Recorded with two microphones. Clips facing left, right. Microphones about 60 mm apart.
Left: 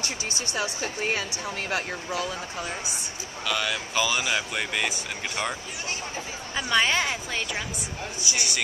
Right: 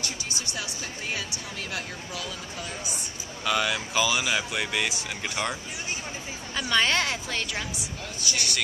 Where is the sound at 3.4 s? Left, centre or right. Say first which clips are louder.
Right 2 dB; centre.